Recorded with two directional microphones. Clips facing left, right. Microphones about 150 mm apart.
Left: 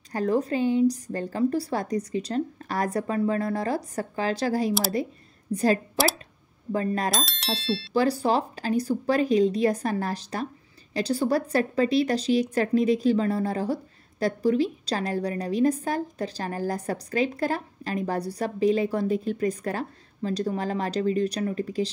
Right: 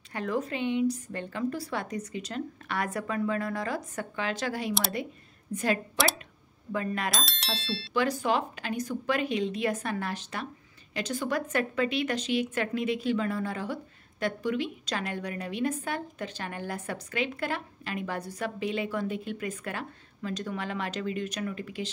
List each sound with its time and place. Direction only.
0.1 s a woman's voice: 35° left (ahead or behind)
7.1 s speech: centre (ahead or behind)
7.9 s a woman's voice: 35° left (ahead or behind)